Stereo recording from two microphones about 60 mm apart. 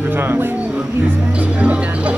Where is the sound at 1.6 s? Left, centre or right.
Right.